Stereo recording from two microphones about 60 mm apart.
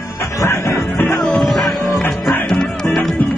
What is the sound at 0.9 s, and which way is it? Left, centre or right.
Music, left.